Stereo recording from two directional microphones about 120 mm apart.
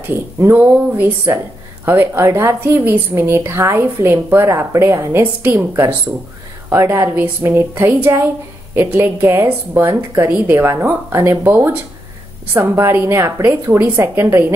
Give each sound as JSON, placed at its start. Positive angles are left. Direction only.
{"t": 0.1, "sound": "a woman's voice", "side_deg": -20}